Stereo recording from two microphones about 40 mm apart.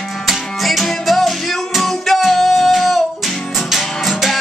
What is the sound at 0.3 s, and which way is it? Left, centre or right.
Music, centre.